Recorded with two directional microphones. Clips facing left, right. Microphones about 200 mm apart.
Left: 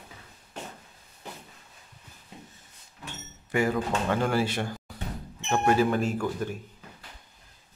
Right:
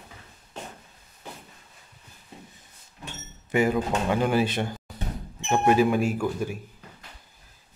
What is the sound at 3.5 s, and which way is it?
Speech, 20° right (ahead or behind).